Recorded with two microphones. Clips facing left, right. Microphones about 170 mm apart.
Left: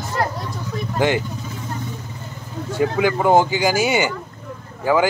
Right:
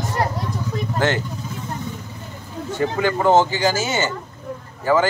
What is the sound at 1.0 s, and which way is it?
Speech, 15° left (ahead or behind).